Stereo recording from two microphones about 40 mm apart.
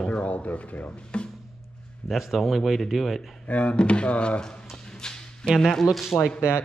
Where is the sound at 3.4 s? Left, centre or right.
Left.